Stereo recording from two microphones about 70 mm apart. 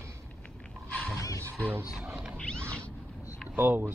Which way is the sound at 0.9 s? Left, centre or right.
Centre.